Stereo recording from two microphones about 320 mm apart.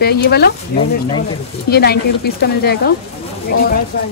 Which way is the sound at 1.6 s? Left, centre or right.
Left.